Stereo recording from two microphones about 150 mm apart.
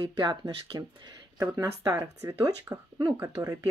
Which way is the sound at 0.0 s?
35° right (ahead or behind).